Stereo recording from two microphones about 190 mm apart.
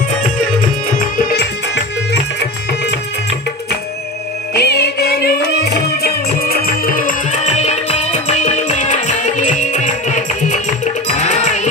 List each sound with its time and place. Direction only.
1.1 s music: 60° left (ahead or behind)
4.6 s music: 60° left (ahead or behind); by 11.6 s 40° left (ahead or behind)